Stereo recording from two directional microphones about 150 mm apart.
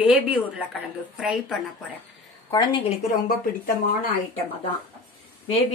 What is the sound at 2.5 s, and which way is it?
Speech, 25° left (ahead or behind).